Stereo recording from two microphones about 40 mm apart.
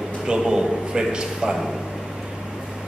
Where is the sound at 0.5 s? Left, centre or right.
Centre.